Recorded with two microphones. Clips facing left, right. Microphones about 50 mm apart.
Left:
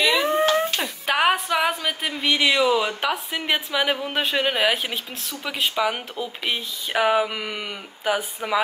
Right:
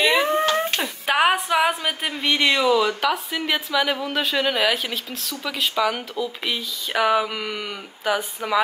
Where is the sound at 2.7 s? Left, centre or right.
Centre.